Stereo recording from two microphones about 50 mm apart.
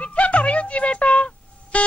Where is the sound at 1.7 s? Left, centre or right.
Left.